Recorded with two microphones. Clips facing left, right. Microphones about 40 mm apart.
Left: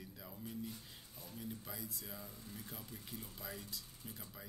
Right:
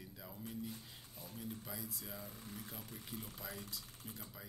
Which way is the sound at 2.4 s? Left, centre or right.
Right.